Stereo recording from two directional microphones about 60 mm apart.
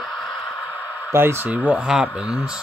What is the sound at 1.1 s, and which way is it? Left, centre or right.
Speech, right.